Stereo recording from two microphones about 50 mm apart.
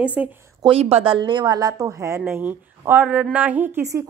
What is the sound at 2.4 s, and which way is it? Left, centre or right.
A woman's voice, right.